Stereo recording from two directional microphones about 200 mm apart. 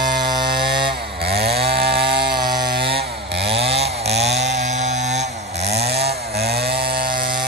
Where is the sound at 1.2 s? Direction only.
55° right (ahead or behind).